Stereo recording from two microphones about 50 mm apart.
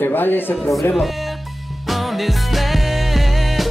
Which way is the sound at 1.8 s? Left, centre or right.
Centre.